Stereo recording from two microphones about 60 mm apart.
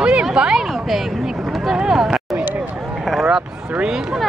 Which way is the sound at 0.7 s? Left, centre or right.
Centre.